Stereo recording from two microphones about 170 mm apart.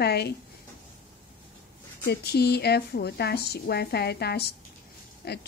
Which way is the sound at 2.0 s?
70° left (ahead or behind).